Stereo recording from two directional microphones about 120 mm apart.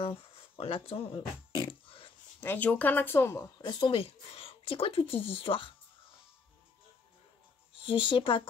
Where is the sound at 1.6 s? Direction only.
45° left (ahead or behind).